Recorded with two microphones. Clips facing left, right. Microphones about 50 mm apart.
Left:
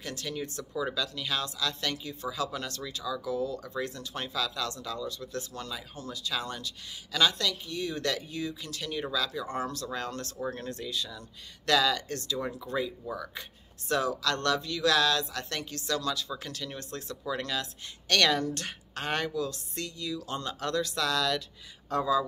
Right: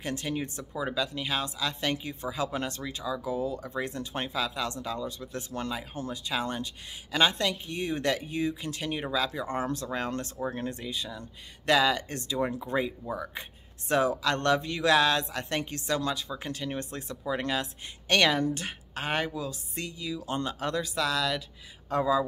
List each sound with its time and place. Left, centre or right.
0.0 s speech: right